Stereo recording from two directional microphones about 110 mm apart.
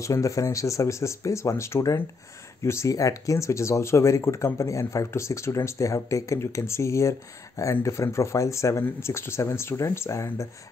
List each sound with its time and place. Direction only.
0.0 s speech: 30° left (ahead or behind)